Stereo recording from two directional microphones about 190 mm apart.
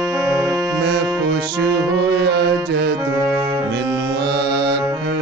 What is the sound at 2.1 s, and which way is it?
Music, 65° right (ahead or behind).